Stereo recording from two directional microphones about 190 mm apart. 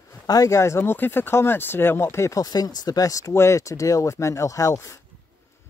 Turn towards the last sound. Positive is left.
turn(degrees=15)  # may be behind; listen again after turning